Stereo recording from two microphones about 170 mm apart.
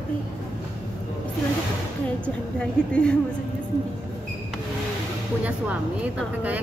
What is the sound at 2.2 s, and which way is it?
Speech, 5° left (ahead or behind).